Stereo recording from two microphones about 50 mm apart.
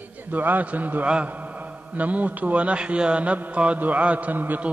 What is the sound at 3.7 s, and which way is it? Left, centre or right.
Music, right.